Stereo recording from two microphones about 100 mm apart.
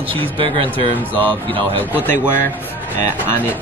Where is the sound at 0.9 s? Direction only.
15° left (ahead or behind).